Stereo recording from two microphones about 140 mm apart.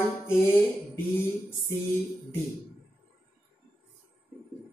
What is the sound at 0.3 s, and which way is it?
Music, 15° left (ahead or behind).